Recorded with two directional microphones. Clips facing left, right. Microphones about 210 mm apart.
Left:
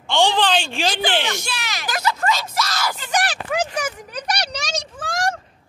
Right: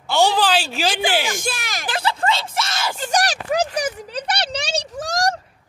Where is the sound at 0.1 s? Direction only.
5° right (ahead or behind).